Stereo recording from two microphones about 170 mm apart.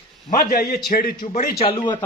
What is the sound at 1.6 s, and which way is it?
Speech, 30° left (ahead or behind).